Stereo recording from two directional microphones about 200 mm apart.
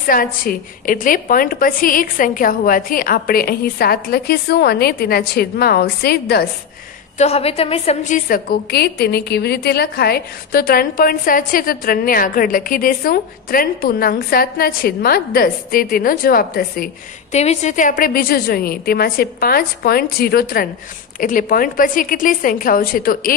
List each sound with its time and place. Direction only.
0.0 s a woman's voice: 45° left (ahead or behind)
7.2 s a woman's voice: 30° left (ahead or behind)